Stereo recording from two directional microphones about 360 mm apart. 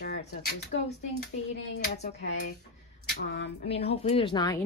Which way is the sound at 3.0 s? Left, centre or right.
Left.